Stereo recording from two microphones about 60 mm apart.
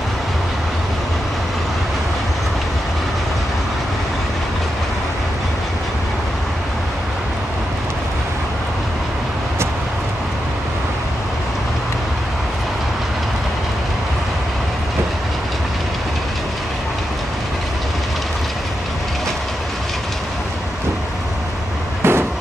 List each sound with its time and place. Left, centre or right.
22.0 s vehicle: right